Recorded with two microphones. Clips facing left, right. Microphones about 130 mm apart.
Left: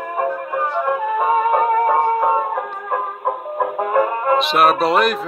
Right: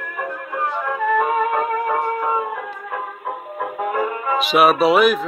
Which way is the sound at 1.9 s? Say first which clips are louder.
Left 5 dB; 40° left (ahead or behind).